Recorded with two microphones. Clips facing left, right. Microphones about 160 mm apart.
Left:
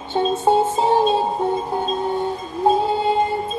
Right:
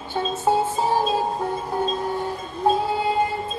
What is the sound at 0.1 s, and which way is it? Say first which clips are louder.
Music: left 5 dB; 25° left (ahead or behind).